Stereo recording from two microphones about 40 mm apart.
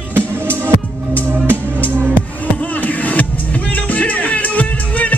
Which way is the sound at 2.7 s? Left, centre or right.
Left.